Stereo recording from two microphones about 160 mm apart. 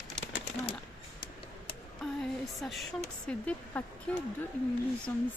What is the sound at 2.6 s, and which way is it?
Speech, centre (ahead or behind).